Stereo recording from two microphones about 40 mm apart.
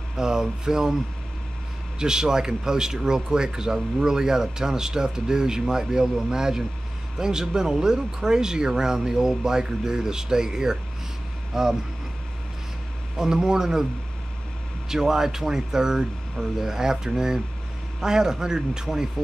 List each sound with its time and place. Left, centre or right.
0.2 s speech: centre
2.0 s speech: centre
13.2 s speech: centre
14.9 s speech: centre